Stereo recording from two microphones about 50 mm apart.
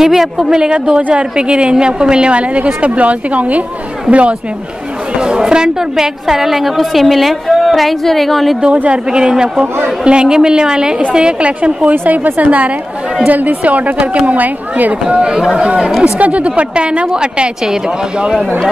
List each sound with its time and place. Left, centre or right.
0.0 s a woman's voice: centre
8.7 s a woman's voice: right
9.1 s a woman's voice: centre
11.9 s a woman's voice: right; by 18.5 s centre